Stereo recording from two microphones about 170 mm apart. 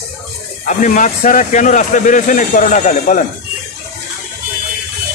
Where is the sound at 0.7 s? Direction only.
50° left (ahead or behind).